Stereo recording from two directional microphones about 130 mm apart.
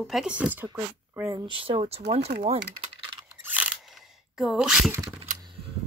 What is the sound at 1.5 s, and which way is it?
Speech, 45° right (ahead or behind).